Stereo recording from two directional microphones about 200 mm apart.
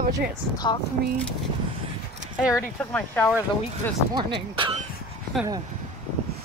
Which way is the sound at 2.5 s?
10° left (ahead or behind).